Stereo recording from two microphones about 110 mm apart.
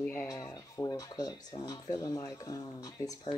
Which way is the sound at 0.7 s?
35° left (ahead or behind).